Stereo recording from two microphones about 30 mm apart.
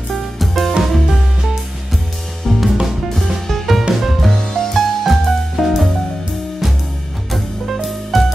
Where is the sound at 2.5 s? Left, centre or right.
Centre.